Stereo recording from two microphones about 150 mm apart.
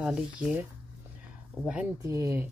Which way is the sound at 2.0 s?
20° right (ahead or behind).